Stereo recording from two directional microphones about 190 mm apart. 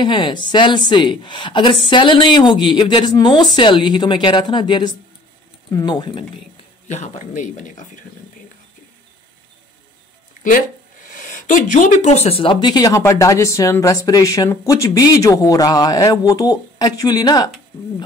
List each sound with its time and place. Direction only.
0.0 s speech: 25° left (ahead or behind)
6.9 s speech: 40° left (ahead or behind)
10.4 s speech: 45° left (ahead or behind); by 17.5 s 20° left (ahead or behind)